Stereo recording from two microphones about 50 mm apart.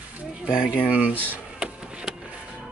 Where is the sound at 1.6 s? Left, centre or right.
Centre.